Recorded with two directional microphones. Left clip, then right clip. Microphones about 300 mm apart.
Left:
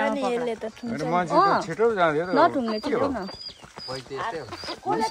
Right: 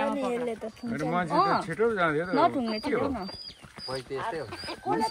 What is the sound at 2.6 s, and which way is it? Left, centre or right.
Speech, left.